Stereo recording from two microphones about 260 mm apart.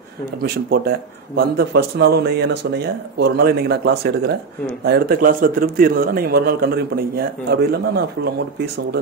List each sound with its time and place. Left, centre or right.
0.4 s a man's voice: right